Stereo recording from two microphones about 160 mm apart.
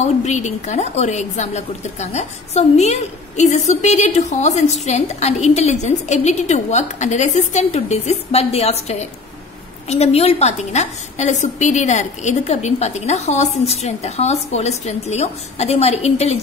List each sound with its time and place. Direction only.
0.0 s a woman's voice: 45° left (ahead or behind)